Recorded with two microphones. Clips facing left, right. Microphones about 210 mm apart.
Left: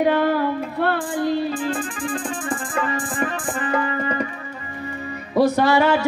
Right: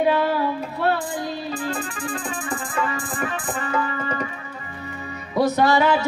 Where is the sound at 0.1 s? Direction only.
50° left (ahead or behind).